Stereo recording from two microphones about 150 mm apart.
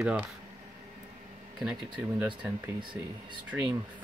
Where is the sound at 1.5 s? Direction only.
Centre (ahead or behind).